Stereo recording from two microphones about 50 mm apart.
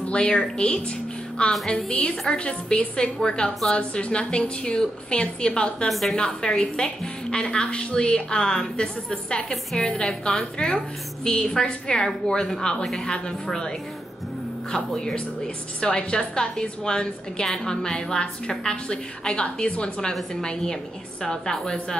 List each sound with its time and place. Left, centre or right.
0.0 s a woman's voice: left
5.9 s a woman's voice: centre
6.1 s a woman's voice: centre